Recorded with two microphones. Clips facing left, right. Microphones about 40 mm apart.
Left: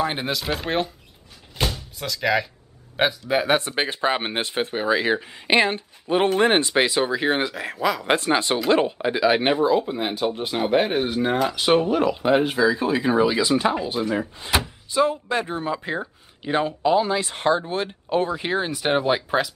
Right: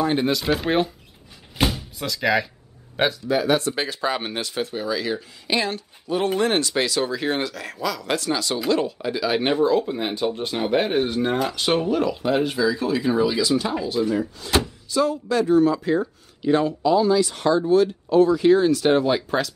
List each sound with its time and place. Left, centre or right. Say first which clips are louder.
0.0 s speech: right 3 dB; centre
0.3 s speech: right 3 dB; centre
1.6 s door: right 3 dB; centre
2.0 s speech: right 1 dB; centre
3.3 s speech: even; left
14.9 s speech: left 2 dB; left